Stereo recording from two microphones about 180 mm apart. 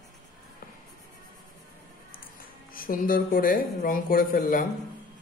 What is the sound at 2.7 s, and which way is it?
Speech, 50° left (ahead or behind).